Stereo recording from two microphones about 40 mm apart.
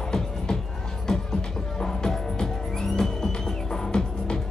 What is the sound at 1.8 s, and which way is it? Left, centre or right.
Music, centre.